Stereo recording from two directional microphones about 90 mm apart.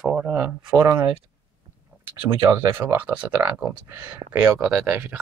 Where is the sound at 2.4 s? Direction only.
30° right (ahead or behind).